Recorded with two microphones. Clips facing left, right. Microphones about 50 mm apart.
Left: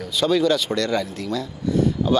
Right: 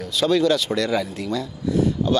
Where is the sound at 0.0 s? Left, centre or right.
Centre.